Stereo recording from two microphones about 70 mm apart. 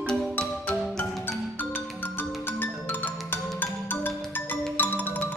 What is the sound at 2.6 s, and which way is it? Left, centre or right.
Music, left.